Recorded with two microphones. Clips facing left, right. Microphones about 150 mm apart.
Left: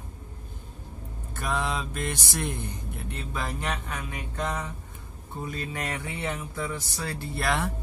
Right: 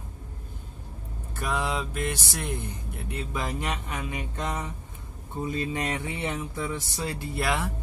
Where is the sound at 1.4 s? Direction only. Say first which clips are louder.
Right 1 dB; 5° right (ahead or behind).